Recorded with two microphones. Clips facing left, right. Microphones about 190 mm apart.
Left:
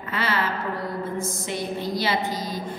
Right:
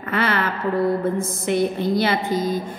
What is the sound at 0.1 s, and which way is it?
A woman's voice, 55° right (ahead or behind).